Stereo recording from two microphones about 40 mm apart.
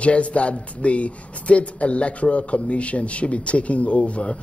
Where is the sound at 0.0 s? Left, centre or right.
Left.